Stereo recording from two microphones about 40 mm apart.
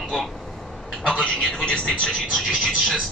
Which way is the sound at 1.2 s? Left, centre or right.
Centre.